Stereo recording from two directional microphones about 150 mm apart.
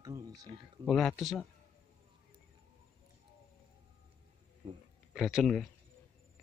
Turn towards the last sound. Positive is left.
turn(degrees=0)  # may be behind; listen again after turning